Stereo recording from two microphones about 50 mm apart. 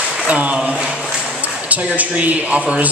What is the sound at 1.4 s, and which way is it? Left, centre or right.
Speech, right.